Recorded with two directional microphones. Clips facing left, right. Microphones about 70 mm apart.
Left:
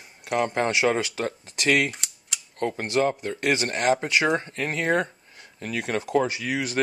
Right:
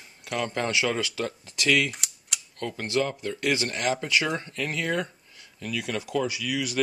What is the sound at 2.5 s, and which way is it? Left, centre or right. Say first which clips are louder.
Speech: left 3 dB; left.